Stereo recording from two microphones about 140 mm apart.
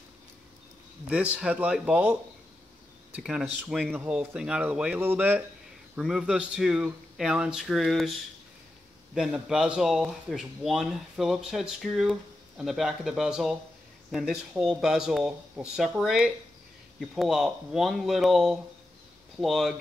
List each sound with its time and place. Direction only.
1.0 s speech: 10° right (ahead or behind)
9.1 s speech: 5° right (ahead or behind)